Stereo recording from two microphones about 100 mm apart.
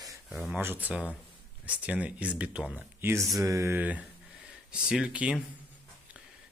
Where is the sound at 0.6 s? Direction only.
20° right (ahead or behind).